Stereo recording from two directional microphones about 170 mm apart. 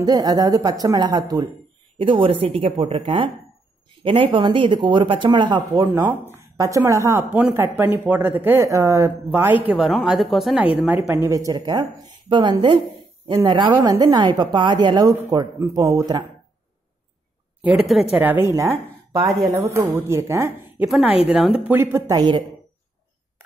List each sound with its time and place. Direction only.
0.0 s a woman's voice: 20° right (ahead or behind)
5.9 s speech: 10° right (ahead or behind)
10.9 s a woman's voice: 15° right (ahead or behind)
18.1 s speech: 10° right (ahead or behind)
19.2 s speech: centre (ahead or behind)
19.5 s speech: 15° right (ahead or behind)